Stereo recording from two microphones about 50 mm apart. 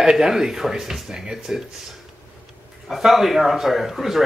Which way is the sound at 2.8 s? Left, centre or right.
Centre.